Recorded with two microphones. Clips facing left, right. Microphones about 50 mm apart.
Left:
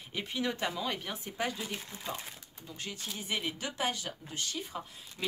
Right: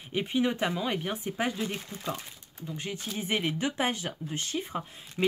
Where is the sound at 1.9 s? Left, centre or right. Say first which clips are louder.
Right 5 dB; right.